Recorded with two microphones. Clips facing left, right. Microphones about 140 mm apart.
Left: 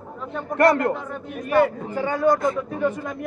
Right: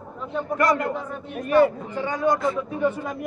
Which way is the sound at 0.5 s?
60° left (ahead or behind).